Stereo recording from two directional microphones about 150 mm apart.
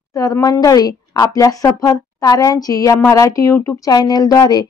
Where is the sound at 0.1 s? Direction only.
20° left (ahead or behind).